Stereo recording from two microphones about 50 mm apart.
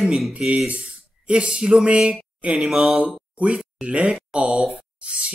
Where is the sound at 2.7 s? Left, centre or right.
Centre.